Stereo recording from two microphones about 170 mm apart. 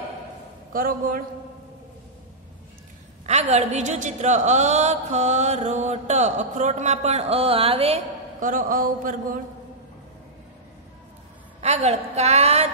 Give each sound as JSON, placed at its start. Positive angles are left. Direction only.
{"t": 0.7, "sound": "a man's voice", "side_deg": -55}
{"t": 3.3, "sound": "a man's voice", "side_deg": -40}
{"t": 8.4, "sound": "a man's voice", "side_deg": -50}
{"t": 11.6, "sound": "a woman's voice", "side_deg": -40}